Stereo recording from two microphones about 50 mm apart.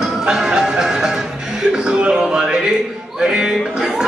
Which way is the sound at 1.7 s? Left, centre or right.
Centre.